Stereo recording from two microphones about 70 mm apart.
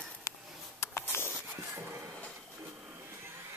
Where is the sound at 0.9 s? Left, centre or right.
Left.